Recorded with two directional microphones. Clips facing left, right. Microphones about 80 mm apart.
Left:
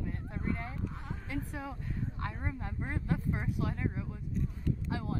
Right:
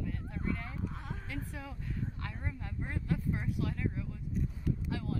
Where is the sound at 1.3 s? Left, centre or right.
Left.